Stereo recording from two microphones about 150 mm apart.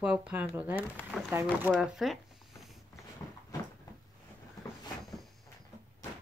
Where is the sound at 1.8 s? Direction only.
Centre (ahead or behind).